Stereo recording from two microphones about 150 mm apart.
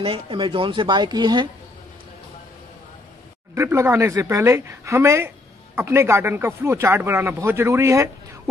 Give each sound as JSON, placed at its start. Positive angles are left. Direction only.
{"t": 0.0, "sound": "speech", "side_deg": -35}
{"t": 3.5, "sound": "speech", "side_deg": -15}